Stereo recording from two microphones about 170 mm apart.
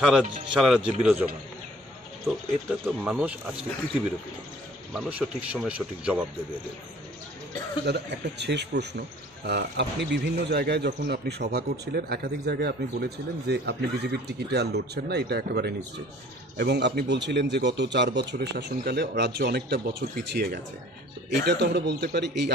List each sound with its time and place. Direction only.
0.0 s speech: 5° right (ahead or behind)
2.8 s speech: 5° right (ahead or behind)
4.9 s speech: 5° right (ahead or behind)
7.8 s a man's voice: 85° right; by 20.6 s 65° right (ahead or behind)
21.4 s a man's voice: 85° right